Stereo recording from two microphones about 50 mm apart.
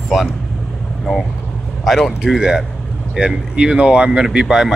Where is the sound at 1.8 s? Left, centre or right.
Centre.